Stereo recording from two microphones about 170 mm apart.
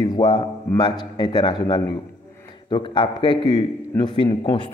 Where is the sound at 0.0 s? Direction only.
25° left (ahead or behind).